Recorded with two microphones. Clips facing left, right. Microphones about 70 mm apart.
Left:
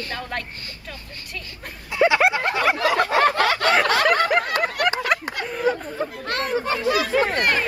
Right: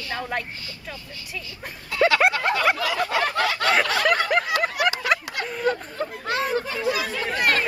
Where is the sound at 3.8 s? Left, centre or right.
Left.